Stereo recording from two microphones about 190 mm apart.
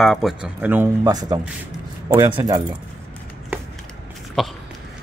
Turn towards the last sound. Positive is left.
turn(degrees=0)  # may be behind; listen again after turning